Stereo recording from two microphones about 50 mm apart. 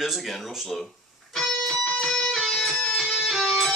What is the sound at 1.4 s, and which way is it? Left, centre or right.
Music, centre.